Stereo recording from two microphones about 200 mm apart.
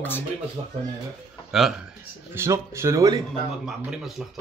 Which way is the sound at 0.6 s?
25° right (ahead or behind).